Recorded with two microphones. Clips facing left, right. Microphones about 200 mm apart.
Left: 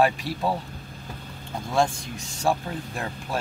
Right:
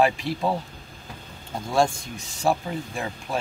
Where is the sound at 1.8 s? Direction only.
Centre (ahead or behind).